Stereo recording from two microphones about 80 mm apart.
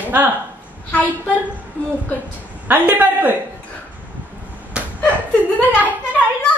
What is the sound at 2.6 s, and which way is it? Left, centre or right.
Speech, right.